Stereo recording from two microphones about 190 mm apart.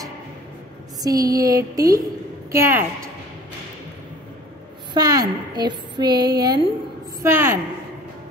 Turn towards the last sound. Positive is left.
turn(degrees=-10)  # may be behind; listen again after turning